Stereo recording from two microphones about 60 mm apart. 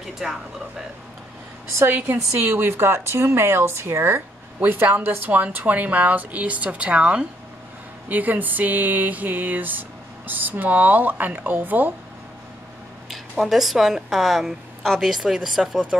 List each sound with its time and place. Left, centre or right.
0.2 s speech: centre
1.9 s a sound: right
2.5 s speech: right
4.6 s a woman's voice: right
8.1 s a sound: right
13.1 s a woman's voice: centre